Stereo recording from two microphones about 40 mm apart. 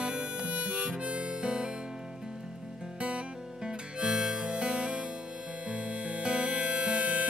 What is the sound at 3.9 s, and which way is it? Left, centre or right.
Harmonica, right.